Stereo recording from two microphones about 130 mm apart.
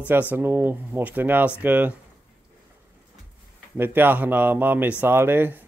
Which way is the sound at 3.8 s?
15° right (ahead or behind).